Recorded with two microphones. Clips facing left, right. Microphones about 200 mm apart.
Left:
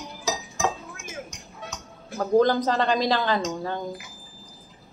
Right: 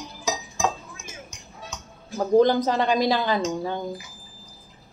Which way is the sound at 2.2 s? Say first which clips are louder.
Right 2 dB; 15° right (ahead or behind).